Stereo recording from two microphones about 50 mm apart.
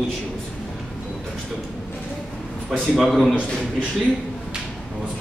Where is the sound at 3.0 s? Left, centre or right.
Centre.